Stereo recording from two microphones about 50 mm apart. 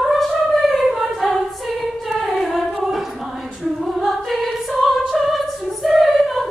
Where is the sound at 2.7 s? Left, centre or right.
Centre.